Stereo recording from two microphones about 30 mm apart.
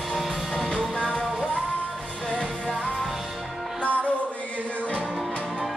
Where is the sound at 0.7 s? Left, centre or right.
Left.